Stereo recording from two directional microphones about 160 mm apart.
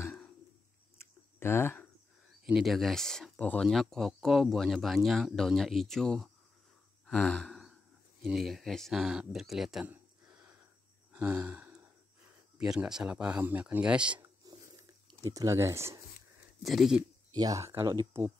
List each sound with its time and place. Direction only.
0.0 s a sound: 10° left (ahead or behind)
2.4 s speech: centre (ahead or behind)
7.1 s gasp: 5° left (ahead or behind)
8.2 s speech: centre (ahead or behind)
14.4 s a sound: 25° right (ahead or behind)
16.6 s speech: centre (ahead or behind)
17.3 s speech: 25° right (ahead or behind)